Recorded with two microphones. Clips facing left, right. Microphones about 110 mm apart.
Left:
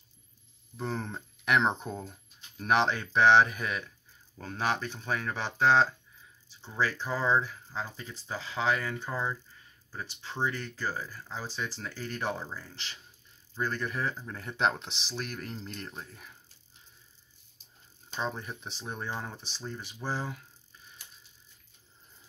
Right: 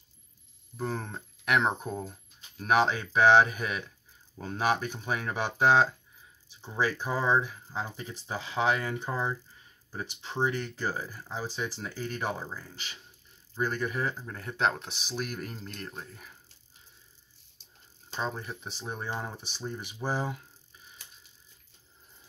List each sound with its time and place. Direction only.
0.7 s speech: 5° right (ahead or behind)
18.1 s speech: centre (ahead or behind)